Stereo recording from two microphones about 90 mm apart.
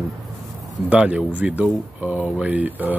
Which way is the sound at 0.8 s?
10° right (ahead or behind).